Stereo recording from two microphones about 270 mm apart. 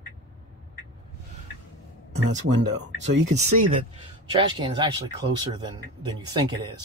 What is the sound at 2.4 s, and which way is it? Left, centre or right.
Speech, right.